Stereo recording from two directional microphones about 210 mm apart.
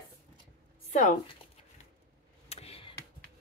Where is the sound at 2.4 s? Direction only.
30° left (ahead or behind).